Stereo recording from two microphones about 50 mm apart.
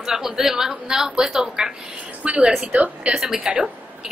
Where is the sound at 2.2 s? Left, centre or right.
Right.